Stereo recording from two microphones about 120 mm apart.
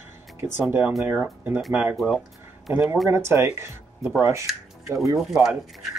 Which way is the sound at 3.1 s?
20° right (ahead or behind).